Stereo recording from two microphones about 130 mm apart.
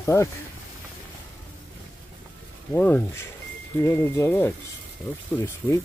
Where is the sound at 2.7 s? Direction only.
15° left (ahead or behind).